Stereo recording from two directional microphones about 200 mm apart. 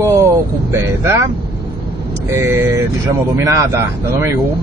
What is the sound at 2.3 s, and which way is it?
Speech, 15° right (ahead or behind).